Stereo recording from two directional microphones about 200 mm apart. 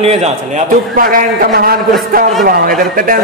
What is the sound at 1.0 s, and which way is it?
A man's voice, 45° right (ahead or behind).